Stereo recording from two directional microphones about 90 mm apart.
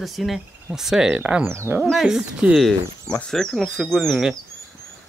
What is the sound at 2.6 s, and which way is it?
Speech, 5° left (ahead or behind).